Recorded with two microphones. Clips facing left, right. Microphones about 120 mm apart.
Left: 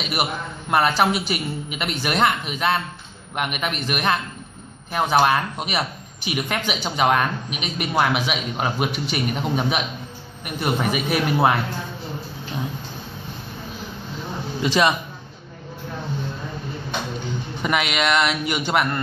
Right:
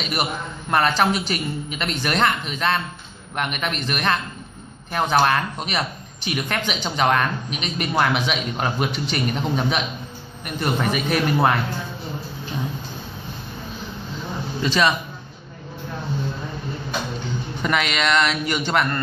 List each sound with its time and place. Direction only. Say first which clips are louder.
0.0 s speech: even; 10° left (ahead or behind)
14.6 s speech: left 1 dB; 15° left (ahead or behind)
17.6 s speech: even; 10° left (ahead or behind)